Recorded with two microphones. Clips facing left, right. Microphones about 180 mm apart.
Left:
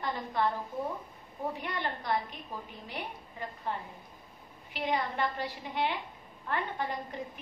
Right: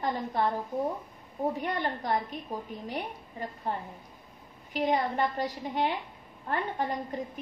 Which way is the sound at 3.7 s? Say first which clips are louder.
Right 2 dB; 40° right (ahead or behind).